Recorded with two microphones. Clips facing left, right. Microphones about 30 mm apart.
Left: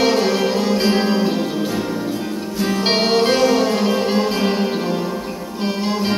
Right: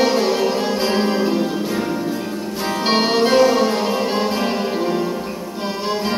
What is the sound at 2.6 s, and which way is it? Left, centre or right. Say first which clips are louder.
Music: left 3 dB; centre.